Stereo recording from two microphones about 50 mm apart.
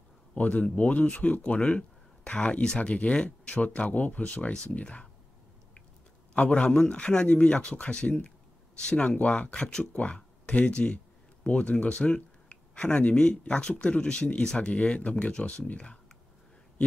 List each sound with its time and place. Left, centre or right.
0.4 s speech: left
6.3 s speech: left
9.9 s speech: left